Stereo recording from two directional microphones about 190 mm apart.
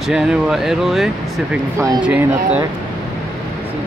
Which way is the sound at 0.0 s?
Centre (ahead or behind).